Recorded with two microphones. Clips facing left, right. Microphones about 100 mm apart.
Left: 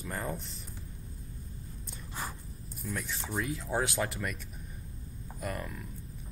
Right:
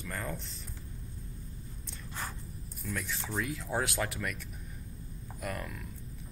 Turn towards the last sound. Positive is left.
turn(degrees=5)  # may be behind; listen again after turning